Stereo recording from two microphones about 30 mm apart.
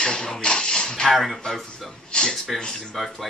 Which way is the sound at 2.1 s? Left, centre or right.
Left.